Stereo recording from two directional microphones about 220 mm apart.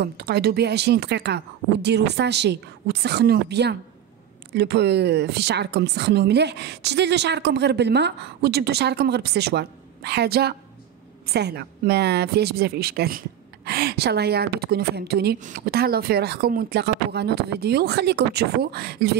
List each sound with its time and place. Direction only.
0.0 s a woman's voice: 45° right (ahead or behind)